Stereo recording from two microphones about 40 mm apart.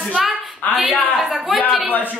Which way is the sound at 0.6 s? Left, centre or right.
Left.